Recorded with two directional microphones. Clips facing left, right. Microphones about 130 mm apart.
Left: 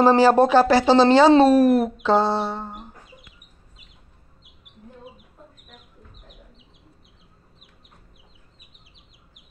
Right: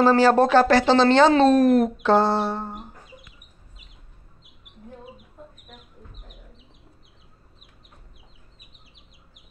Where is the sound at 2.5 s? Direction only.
10° right (ahead or behind).